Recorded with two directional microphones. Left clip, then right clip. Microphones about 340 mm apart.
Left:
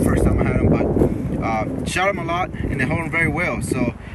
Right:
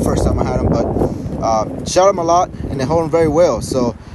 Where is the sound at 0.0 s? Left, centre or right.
Centre.